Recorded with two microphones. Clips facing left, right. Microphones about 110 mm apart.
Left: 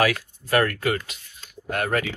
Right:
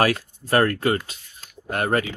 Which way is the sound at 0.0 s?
35° right (ahead or behind).